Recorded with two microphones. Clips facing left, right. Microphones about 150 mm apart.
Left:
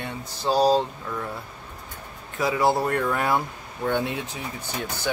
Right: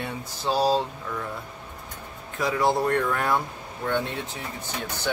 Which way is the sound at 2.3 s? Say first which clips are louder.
Left 1 dB; 5° left (ahead or behind).